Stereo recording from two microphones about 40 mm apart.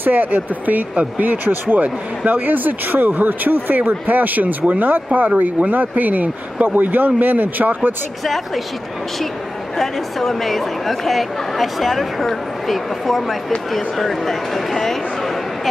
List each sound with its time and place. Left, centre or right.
0.0 s a man's voice: right
1.4 s a man's voice: right
9.8 s speech: centre